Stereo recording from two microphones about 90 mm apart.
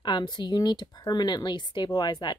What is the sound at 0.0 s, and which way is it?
Speech, 55° left (ahead or behind).